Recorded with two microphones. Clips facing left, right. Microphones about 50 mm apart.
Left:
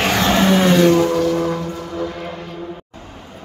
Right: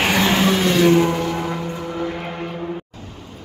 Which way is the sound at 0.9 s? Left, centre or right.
Right.